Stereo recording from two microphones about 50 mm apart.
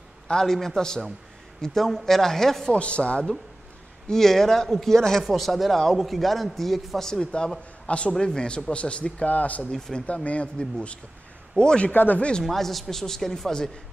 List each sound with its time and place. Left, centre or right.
0.3 s a man's voice: centre
2.7 s speech: left
4.1 s a man's voice: centre; by 9.7 s left
9.7 s a man's voice: centre
10.0 s speech: left
11.9 s speech: left
12.2 s speech: centre
12.4 s a man's voice: centre